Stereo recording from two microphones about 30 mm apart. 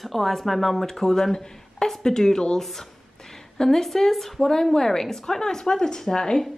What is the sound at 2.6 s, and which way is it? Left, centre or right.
Speech, centre.